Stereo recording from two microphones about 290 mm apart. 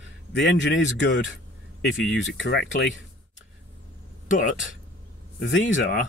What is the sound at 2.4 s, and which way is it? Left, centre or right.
Speech, left.